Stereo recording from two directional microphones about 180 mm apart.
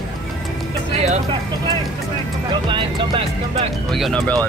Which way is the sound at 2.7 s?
25° right (ahead or behind).